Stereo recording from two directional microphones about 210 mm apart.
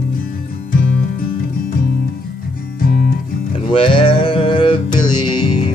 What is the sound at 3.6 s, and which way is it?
Music, 25° left (ahead or behind).